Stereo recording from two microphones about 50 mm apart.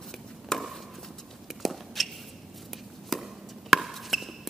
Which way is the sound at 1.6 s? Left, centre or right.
Centre.